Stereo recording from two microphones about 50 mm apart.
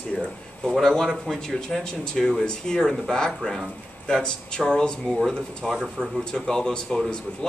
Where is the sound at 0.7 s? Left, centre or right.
Centre.